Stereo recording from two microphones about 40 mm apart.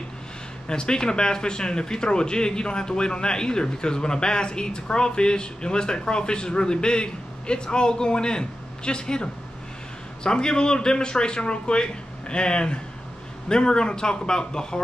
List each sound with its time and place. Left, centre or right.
0.7 s speech: left